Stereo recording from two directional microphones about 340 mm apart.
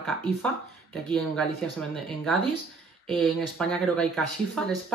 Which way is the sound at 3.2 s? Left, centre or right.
Centre.